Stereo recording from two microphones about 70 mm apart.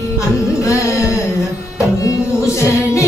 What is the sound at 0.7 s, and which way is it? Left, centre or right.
Carnatic music, left.